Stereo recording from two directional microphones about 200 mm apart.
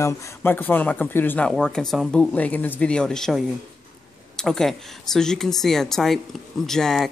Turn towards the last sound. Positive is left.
turn(degrees=0)  # may be behind; listen again after turning